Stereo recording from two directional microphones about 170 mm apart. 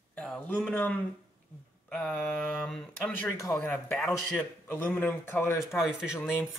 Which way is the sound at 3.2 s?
20° left (ahead or behind).